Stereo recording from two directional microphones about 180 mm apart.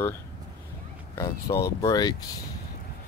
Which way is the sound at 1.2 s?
20° left (ahead or behind).